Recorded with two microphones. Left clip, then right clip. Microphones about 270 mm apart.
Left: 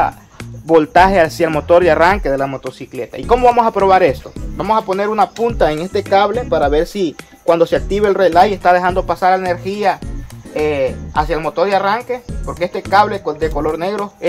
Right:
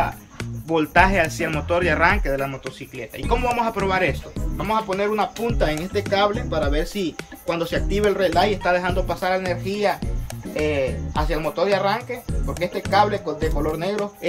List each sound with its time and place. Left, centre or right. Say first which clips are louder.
0.7 s speech: left 8 dB; centre